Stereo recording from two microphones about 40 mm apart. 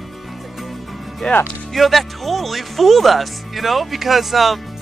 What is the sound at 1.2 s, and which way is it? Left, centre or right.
Speech, left.